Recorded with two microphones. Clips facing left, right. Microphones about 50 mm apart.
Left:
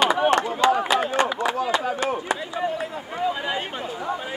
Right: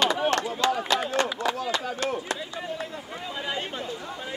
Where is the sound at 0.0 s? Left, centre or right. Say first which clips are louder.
Left 5 dB; left.